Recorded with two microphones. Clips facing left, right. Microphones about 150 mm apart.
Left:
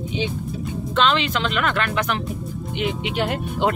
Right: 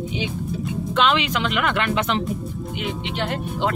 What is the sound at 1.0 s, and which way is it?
Speech, 10° right (ahead or behind).